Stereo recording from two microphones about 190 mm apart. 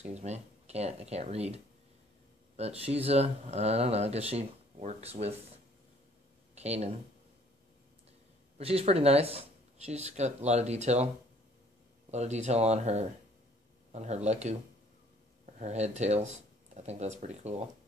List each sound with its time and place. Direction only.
0.0 s speech: 35° right (ahead or behind)
6.5 s speech: 35° right (ahead or behind)
8.5 s speech: 30° right (ahead or behind)
12.1 s speech: 35° right (ahead or behind)